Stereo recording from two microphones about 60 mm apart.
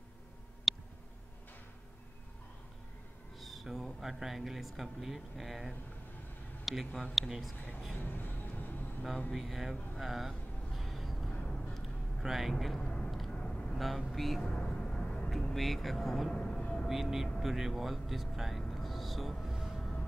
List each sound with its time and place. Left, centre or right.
0.7 s a sound: centre
3.3 s speech: centre
7.9 s music: left
9.3 s a sound: centre
11.3 s a sound: centre
11.7 s vehicle: centre
12.8 s vehicle: centre
13.7 s speech: centre
14.5 s a sound: centre
15.5 s speech: centre
16.3 s music: centre
16.8 s speech: centre
18.6 s music: centre